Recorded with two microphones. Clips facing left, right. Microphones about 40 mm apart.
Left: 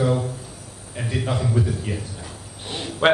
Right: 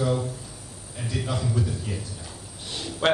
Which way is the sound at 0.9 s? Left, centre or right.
Left.